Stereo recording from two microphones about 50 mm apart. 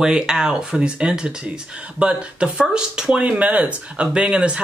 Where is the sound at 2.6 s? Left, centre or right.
Centre.